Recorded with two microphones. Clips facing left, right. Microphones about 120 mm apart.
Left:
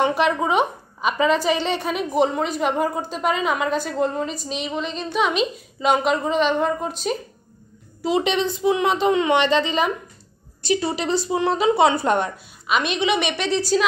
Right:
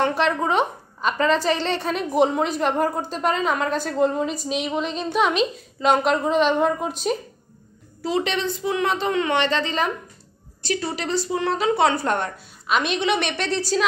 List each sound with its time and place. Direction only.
0.0 s a woman's voice: 10° left (ahead or behind)
8.0 s a woman's voice: 20° left (ahead or behind)
12.6 s a woman's voice: centre (ahead or behind)